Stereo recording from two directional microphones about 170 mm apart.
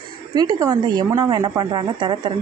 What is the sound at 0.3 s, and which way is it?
Speech, 25° right (ahead or behind).